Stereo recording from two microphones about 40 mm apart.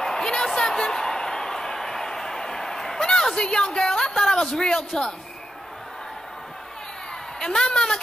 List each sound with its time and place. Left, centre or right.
0.0 s a sound: centre
4.5 s a man's voice: centre
7.3 s a woman's voice: centre